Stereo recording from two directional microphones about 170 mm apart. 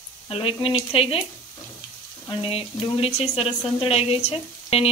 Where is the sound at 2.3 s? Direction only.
35° left (ahead or behind).